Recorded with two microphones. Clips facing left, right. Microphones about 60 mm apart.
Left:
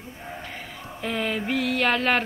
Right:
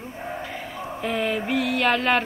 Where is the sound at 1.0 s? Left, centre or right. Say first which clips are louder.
Right 2 dB; centre.